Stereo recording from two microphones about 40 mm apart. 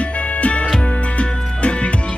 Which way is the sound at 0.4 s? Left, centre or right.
Left.